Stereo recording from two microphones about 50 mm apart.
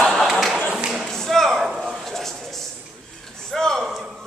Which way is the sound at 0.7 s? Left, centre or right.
Centre.